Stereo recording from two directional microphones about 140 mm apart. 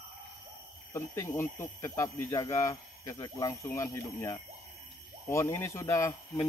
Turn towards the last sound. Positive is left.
turn(degrees=20)  # may be behind; listen again after turning